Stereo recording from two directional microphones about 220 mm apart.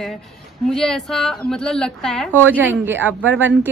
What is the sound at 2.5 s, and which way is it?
Speech, 10° right (ahead or behind).